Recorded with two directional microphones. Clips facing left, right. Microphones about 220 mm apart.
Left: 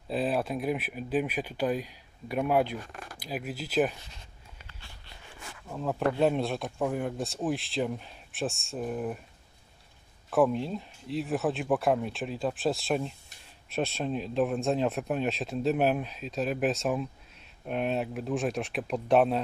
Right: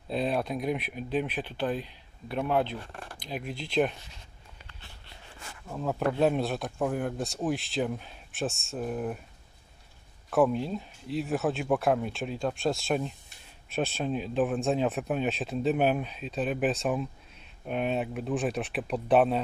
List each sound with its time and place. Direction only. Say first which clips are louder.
0.1 s speech: even; 5° left (ahead or behind)
2.8 s speech: even; 30° right (ahead or behind)
3.2 s speech: left 1 dB; 5° left (ahead or behind)
5.7 s speech: even; centre (ahead or behind)
10.3 s speech: even; centre (ahead or behind)